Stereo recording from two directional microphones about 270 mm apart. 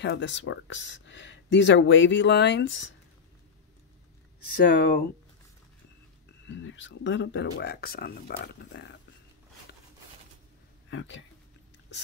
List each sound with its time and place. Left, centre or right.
0.0 s speech: left
4.6 s speech: left
6.4 s speech: left
10.9 s speech: left